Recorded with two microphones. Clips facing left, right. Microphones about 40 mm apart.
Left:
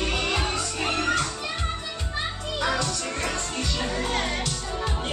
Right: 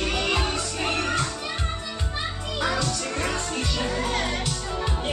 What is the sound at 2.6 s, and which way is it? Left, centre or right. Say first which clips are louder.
Music: even; centre.